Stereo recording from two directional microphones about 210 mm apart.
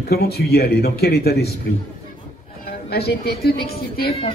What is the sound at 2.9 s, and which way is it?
A man's voice, 50° left (ahead or behind).